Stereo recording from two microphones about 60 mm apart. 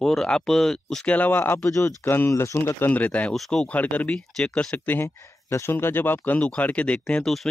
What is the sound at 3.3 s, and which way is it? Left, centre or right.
Speech, centre.